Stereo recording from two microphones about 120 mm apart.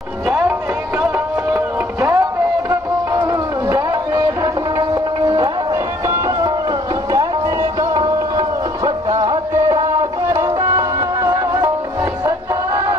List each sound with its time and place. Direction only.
0.3 s music: 20° right (ahead or behind)
3.3 s music: 30° right (ahead or behind)
9.5 s music: 25° right (ahead or behind)